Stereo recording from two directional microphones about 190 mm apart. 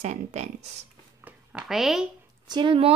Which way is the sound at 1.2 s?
5° right (ahead or behind).